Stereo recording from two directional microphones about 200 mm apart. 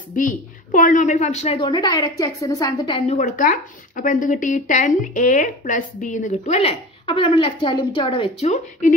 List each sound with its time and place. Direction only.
0.1 s speech: 40° left (ahead or behind); by 3.0 s 20° left (ahead or behind)
3.1 s speech: 40° left (ahead or behind)